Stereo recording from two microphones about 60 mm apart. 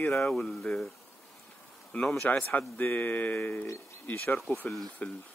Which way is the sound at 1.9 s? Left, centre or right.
Left.